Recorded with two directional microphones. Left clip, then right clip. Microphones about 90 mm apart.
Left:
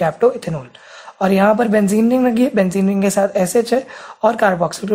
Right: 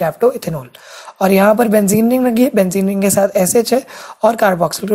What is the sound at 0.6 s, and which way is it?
A woman's voice, 35° right (ahead or behind).